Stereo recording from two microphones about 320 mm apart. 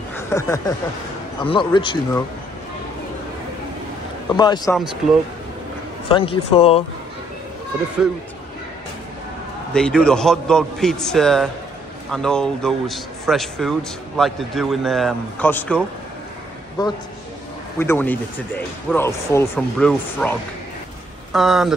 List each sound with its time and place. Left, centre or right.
0.1 s speech: centre
4.4 s speech: centre
6.0 s speech: centre
9.8 s a man's voice: centre
17.7 s a man's voice: centre